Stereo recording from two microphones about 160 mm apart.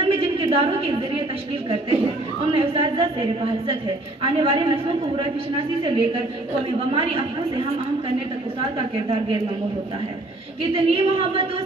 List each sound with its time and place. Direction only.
0.0 s a sound: 40° right (ahead or behind)
2.5 s a woman's voice: 35° right (ahead or behind)
8.5 s a woman's voice: 35° right (ahead or behind)
10.7 s a woman's voice: 35° right (ahead or behind)